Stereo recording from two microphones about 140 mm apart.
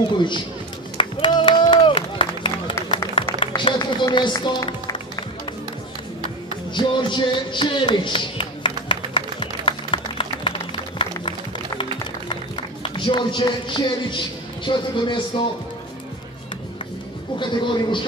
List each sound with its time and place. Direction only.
0.9 s a sound: 35° left (ahead or behind)
3.3 s music: 35° left (ahead or behind)
6.7 s a sound: 35° left (ahead or behind)
11.0 s music: 35° left (ahead or behind)
12.8 s speech: 35° left (ahead or behind)
17.4 s speech: 35° left (ahead or behind)